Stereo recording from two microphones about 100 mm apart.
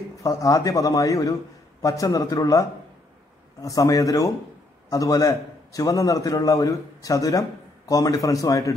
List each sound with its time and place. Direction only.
0.2 s a man's voice: 35° left (ahead or behind)
3.6 s a man's voice: 35° left (ahead or behind)